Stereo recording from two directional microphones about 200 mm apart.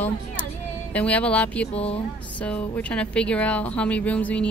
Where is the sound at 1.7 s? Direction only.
30° left (ahead or behind).